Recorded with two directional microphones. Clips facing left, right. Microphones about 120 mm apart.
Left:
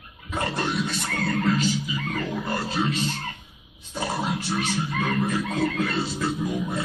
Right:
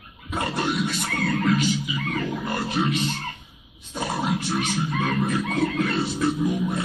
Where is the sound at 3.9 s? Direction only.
15° right (ahead or behind).